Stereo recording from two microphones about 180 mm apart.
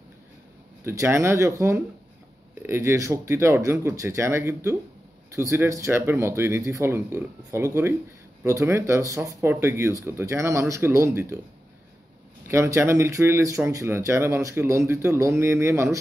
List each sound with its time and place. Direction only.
0.8 s speech: 15° right (ahead or behind)
12.4 s speech: 15° right (ahead or behind)